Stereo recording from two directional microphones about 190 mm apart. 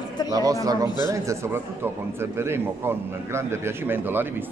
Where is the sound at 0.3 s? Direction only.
20° right (ahead or behind).